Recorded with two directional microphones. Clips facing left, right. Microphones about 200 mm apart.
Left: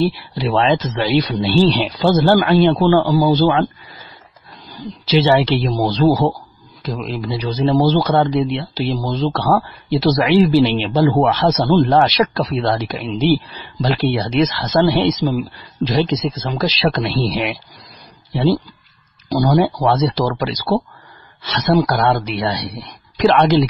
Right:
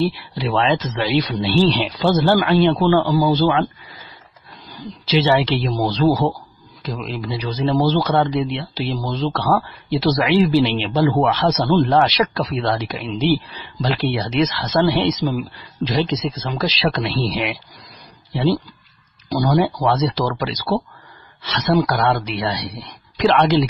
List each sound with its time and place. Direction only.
0.0 s a man's voice: 35° left (ahead or behind)
5.0 s a man's voice: 40° left (ahead or behind)
19.2 s a man's voice: 35° left (ahead or behind)